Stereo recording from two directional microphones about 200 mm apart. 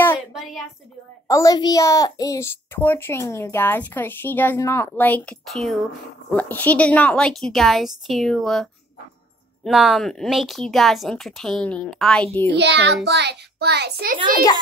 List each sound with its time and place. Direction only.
0.3 s a woman's voice: centre (ahead or behind)
1.2 s a child's voice: 15° left (ahead or behind)
9.7 s speech: centre (ahead or behind)
12.5 s a child's voice: 60° right (ahead or behind)